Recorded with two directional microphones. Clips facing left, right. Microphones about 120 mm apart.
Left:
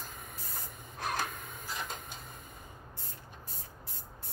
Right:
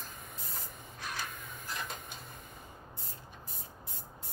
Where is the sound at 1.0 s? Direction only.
50° left (ahead or behind).